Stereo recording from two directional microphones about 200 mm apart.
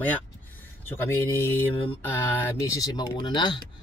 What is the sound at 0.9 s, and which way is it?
Speech, 10° left (ahead or behind).